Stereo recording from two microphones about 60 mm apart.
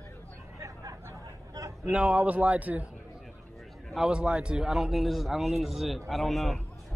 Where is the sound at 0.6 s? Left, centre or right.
Right.